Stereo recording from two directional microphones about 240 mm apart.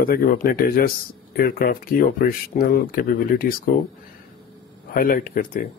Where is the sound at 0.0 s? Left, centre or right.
Left.